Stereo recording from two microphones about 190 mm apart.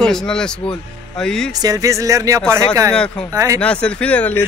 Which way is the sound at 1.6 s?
20° right (ahead or behind).